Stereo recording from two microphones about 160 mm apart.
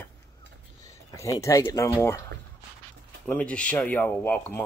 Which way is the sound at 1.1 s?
20° left (ahead or behind).